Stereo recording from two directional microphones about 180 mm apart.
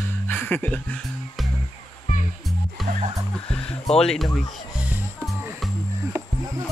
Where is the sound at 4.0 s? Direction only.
5° left (ahead or behind).